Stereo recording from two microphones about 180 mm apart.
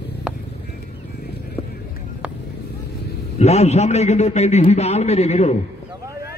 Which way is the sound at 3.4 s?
35° left (ahead or behind).